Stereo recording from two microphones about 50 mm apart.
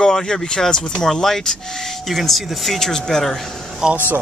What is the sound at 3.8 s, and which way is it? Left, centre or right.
Speech, centre.